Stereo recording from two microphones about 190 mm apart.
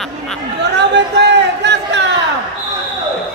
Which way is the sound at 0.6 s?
65° right (ahead or behind).